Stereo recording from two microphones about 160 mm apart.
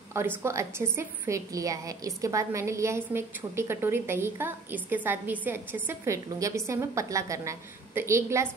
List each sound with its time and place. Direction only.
0.4 s a woman's voice: 15° right (ahead or behind)